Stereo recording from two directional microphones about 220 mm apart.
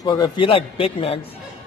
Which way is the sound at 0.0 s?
15° left (ahead or behind).